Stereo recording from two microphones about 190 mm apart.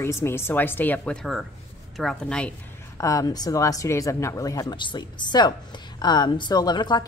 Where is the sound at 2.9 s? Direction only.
15° left (ahead or behind).